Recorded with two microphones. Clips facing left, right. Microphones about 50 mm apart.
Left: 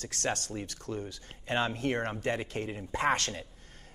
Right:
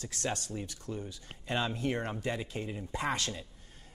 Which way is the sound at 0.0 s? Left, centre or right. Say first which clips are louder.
Left 2 dB; left.